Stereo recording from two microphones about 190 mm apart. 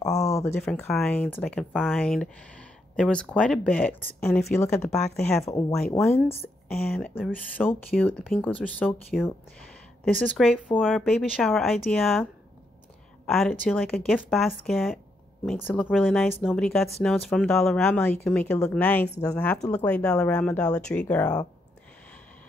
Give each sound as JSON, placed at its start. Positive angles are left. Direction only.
{"t": 0.3, "sound": "a sound", "side_deg": 15}
{"t": 0.6, "sound": "speech", "side_deg": 10}
{"t": 5.2, "sound": "speech", "side_deg": 35}
{"t": 5.8, "sound": "speech", "side_deg": 0}
{"t": 13.3, "sound": "speech", "side_deg": 5}